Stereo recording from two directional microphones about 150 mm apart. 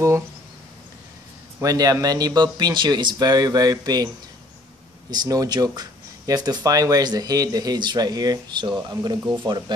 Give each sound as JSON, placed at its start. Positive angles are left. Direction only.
{"t": 1.6, "sound": "speech", "side_deg": -25}
{"t": 5.1, "sound": "speech", "side_deg": -25}